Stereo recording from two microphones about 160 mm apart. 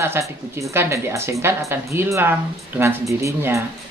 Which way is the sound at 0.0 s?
15° right (ahead or behind).